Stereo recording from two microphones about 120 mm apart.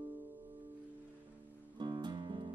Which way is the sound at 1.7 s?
40° right (ahead or behind).